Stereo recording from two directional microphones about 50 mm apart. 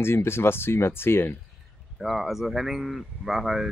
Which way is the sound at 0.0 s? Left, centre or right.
Left.